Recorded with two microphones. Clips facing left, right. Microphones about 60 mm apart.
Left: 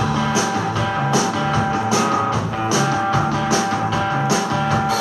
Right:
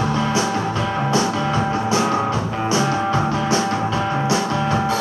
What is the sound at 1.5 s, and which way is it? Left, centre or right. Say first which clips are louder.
Music: left 1 dB; centre.